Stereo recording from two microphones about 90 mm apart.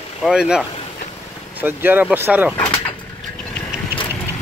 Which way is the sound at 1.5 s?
20° right (ahead or behind).